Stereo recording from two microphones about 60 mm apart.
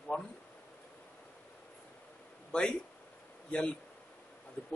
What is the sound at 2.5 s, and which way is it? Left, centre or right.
A man's voice, centre.